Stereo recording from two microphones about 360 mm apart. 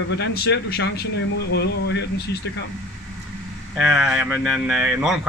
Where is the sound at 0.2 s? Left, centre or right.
Left.